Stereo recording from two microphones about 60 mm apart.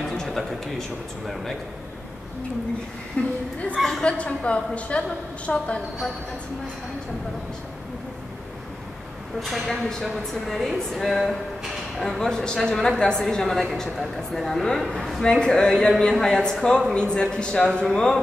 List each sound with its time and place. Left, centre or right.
0.0 s a sound: centre
3.2 s a woman's voice: centre
9.4 s a woman's voice: centre